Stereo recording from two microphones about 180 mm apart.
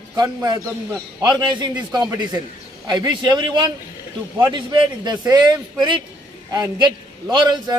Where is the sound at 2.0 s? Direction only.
20° right (ahead or behind).